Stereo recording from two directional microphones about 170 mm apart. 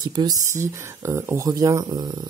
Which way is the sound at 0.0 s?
25° right (ahead or behind).